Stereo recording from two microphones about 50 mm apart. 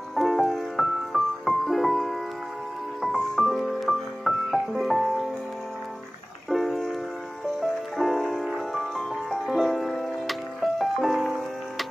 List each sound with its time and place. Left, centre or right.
0.1 s music: centre
6.5 s music: centre
8.0 s music: centre